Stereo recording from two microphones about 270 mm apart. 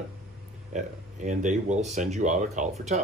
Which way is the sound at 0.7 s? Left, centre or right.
Right.